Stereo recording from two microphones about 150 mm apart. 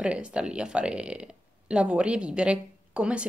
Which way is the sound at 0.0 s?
5° right (ahead or behind).